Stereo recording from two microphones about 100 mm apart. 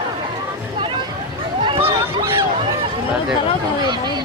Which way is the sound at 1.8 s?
25° right (ahead or behind).